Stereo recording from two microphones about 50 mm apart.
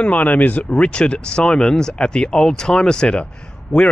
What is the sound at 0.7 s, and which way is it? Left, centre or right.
Speech, left.